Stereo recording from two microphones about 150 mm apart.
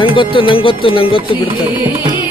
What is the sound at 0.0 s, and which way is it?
Speech, 35° left (ahead or behind).